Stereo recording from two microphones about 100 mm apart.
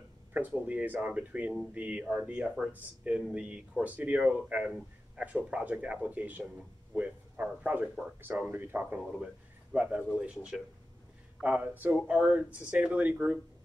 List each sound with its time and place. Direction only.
0.3 s a man's voice: 15° right (ahead or behind)